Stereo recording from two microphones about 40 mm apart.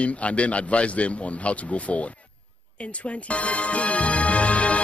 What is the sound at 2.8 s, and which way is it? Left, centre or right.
Music, left.